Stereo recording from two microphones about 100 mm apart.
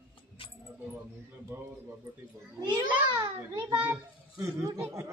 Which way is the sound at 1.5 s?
20° right (ahead or behind).